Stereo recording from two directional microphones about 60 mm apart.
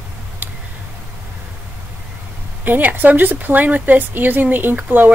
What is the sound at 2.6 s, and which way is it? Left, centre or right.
Speech, right.